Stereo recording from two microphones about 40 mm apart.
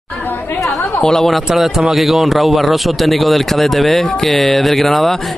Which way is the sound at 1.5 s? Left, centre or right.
Centre.